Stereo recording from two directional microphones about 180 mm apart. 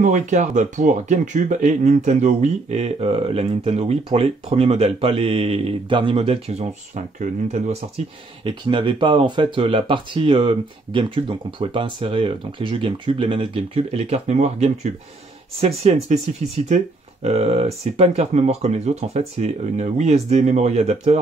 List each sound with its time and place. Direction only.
0.0 s speech: 45° right (ahead or behind)
8.5 s speech: 25° right (ahead or behind)